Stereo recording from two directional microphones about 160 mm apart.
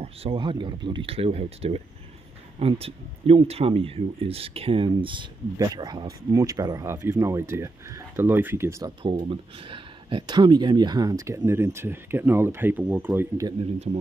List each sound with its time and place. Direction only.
0.0 s speech: 35° right (ahead or behind); by 8.9 s 20° right (ahead or behind)
9.2 s speech: 35° right (ahead or behind); by 13.5 s 15° right (ahead or behind)
13.5 s speech: 35° right (ahead or behind)